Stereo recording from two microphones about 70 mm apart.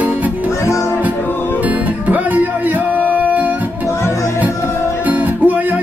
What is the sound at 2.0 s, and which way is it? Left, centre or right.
Music, right.